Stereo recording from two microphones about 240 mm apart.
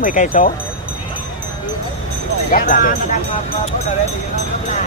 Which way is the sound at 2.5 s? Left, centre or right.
Left.